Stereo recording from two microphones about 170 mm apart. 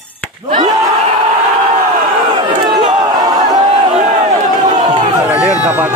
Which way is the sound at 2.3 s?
30° right (ahead or behind).